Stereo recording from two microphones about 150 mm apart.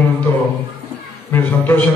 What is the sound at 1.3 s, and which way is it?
Speech, 15° left (ahead or behind).